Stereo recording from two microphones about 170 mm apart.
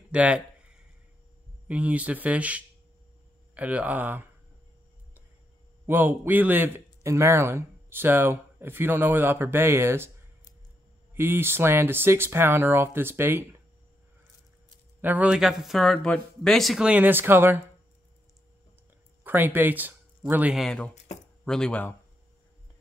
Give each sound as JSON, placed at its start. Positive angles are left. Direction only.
{"t": 0.1, "sound": "a sound", "side_deg": -5}
{"t": 1.7, "sound": "a man's voice", "side_deg": -10}
{"t": 5.9, "sound": "a man's voice", "side_deg": -10}
{"t": 11.1, "sound": "a man's voice", "side_deg": -15}
{"t": 15.0, "sound": "speech", "side_deg": -10}
{"t": 19.2, "sound": "speech", "side_deg": -10}
{"t": 20.9, "sound": "speech", "side_deg": 40}
{"t": 21.5, "sound": "speech", "side_deg": 5}